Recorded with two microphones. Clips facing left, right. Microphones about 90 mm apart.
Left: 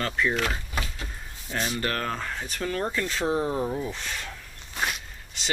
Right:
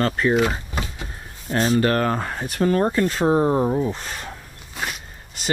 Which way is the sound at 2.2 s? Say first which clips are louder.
Right 8 dB; 35° right (ahead or behind).